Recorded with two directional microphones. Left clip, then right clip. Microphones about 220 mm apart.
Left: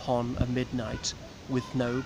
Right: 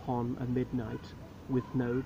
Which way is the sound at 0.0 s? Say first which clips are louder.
Left 6 dB; 35° left (ahead or behind).